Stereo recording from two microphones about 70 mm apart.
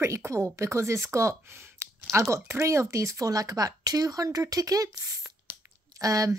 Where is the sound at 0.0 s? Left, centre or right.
Right.